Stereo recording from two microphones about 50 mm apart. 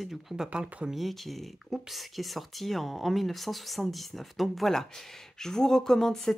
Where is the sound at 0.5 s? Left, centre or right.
Right.